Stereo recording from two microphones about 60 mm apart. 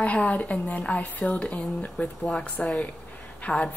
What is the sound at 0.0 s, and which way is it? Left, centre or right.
Speech, left.